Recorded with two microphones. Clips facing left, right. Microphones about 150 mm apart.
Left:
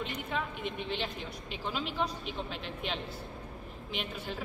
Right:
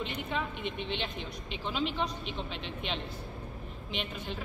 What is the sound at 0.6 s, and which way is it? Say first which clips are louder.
Speech: right 1 dB; 45° left (ahead or behind).